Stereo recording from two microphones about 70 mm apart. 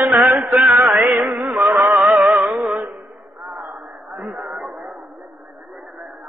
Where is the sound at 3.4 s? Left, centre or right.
Centre.